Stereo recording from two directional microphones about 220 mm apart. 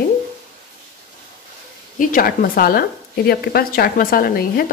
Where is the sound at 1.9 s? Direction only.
40° left (ahead or behind).